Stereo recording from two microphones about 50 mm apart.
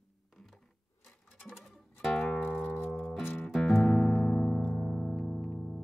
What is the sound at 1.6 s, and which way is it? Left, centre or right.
Music, centre.